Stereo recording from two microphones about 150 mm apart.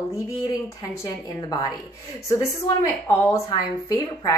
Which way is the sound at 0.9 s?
25° left (ahead or behind).